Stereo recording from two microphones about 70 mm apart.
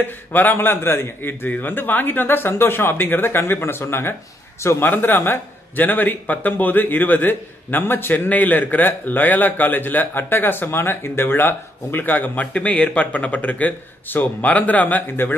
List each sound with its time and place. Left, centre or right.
0.0 s a man's voice: left